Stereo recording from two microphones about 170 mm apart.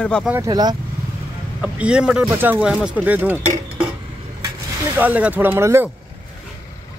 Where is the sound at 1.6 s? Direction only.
5° right (ahead or behind).